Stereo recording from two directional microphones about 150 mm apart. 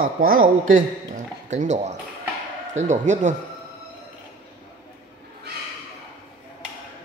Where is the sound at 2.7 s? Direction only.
55° right (ahead or behind).